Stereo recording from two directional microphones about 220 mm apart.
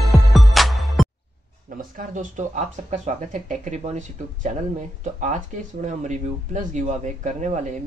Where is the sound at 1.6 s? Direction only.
40° right (ahead or behind).